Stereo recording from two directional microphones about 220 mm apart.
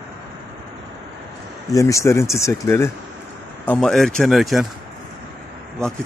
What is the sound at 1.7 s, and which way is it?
Speech, 15° left (ahead or behind).